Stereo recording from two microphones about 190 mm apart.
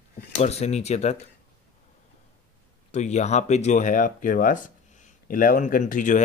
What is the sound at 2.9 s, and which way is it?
Speech, 35° left (ahead or behind).